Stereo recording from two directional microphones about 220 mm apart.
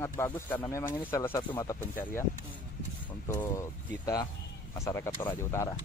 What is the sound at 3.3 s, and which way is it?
Speech, 15° left (ahead or behind).